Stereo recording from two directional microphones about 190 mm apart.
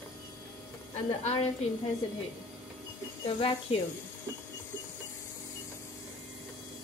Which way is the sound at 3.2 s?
25° left (ahead or behind).